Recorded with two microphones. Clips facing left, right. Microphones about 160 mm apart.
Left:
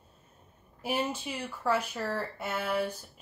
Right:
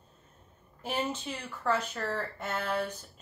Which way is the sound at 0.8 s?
10° left (ahead or behind).